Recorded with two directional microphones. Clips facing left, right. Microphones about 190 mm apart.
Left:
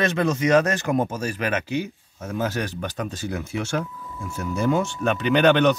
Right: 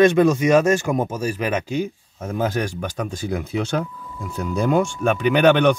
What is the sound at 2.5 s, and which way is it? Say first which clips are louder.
Speech: right 3 dB; 15° right (ahead or behind).